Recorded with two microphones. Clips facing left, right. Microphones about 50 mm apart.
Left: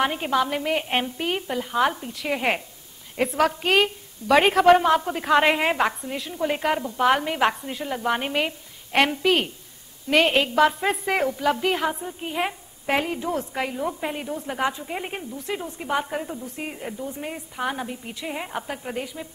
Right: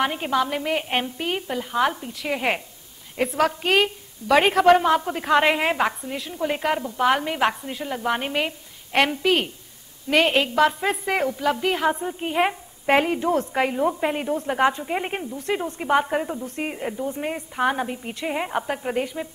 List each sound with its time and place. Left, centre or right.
0.0 s a woman's voice: centre
11.9 s a woman's voice: centre